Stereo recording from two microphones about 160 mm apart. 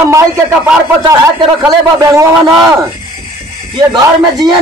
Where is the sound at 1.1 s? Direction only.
20° right (ahead or behind).